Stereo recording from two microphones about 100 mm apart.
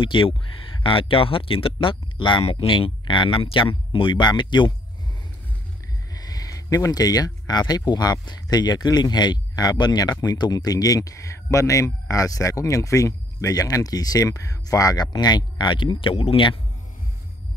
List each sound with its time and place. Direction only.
0.0 s speech: 60° left (ahead or behind)
6.1 s speech: 40° left (ahead or behind); by 16.5 s 60° left (ahead or behind)